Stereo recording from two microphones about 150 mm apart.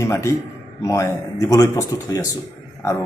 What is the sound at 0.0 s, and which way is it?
A man's voice, 20° left (ahead or behind).